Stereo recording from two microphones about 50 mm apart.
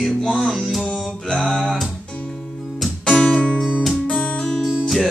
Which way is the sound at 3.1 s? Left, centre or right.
Centre.